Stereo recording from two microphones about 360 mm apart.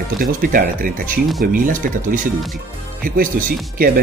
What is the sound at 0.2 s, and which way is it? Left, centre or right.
Speech, right.